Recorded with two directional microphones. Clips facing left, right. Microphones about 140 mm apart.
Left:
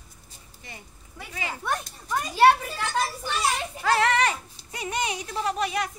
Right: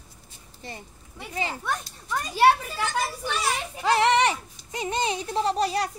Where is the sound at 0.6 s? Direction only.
30° right (ahead or behind).